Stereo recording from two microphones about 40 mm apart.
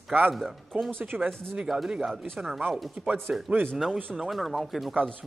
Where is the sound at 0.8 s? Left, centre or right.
Right.